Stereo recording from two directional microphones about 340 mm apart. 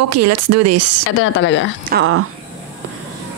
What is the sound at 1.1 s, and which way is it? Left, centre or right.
Speech, left.